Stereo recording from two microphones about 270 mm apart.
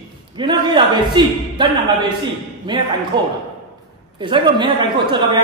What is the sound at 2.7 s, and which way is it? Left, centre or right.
A man's voice, centre.